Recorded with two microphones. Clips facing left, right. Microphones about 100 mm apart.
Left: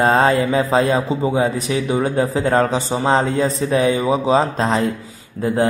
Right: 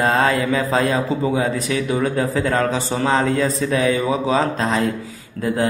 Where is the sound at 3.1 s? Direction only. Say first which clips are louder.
Left 2 dB; 35° left (ahead or behind).